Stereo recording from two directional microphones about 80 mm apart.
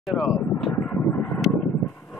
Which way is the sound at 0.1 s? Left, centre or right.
Centre.